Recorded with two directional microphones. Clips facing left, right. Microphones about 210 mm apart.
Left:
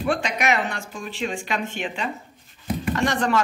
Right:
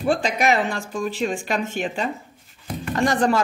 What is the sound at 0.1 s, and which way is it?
Speech, 35° right (ahead or behind).